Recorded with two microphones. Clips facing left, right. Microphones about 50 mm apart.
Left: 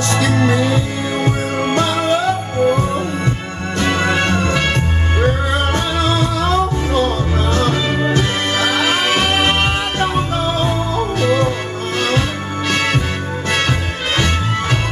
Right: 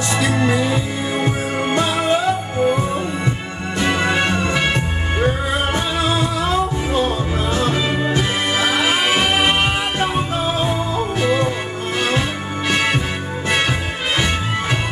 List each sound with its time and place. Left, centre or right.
1.7 s music: centre
3.8 s music: centre
8.2 s music: centre
10.4 s music: left
11.1 s music: centre
12.6 s music: centre